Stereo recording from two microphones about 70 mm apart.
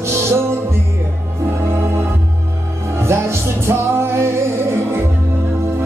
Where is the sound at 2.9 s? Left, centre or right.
Right.